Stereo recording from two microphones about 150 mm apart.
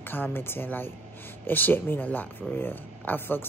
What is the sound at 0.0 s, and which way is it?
A woman's voice, 15° left (ahead or behind).